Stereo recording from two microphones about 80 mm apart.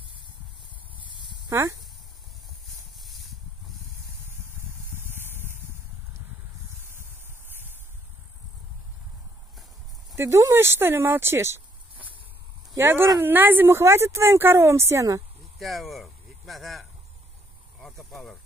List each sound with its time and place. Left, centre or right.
1.5 s speech: right
3.0 s a sound: centre
4.9 s spray: right
10.1 s speech: right
12.7 s speech: right
15.6 s speech: centre
17.7 s snake: centre